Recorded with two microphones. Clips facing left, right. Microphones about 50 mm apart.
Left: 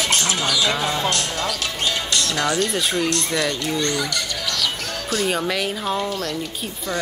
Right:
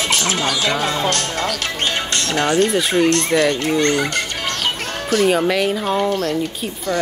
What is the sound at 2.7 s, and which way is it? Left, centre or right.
Speech, centre.